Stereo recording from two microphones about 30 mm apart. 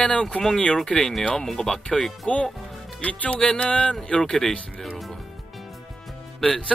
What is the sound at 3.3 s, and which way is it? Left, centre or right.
Music, left.